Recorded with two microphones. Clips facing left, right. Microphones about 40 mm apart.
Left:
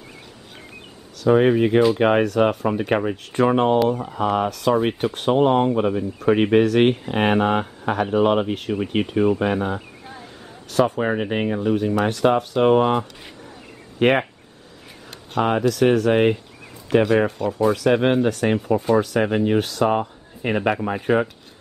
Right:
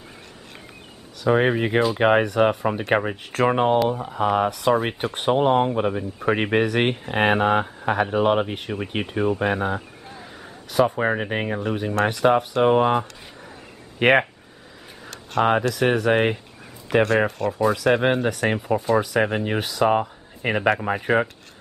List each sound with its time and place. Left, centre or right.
1.2 s speech: centre
15.4 s speech: centre
17.5 s speech: centre